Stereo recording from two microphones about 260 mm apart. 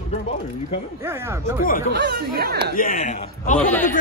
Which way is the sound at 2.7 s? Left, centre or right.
Left.